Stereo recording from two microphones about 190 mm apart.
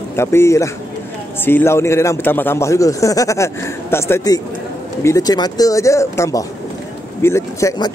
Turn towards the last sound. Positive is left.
turn(degrees=20)  # may be behind; listen again after turning